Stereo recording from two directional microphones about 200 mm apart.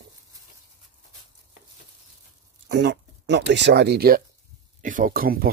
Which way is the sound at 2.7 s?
60° right (ahead or behind).